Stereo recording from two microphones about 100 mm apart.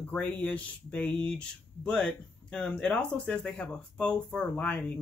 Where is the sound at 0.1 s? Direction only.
15° left (ahead or behind).